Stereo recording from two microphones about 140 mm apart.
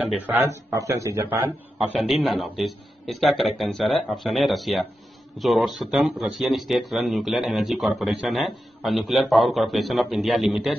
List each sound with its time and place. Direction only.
0.7 s speech: 20° right (ahead or behind)
1.8 s speech: centre (ahead or behind)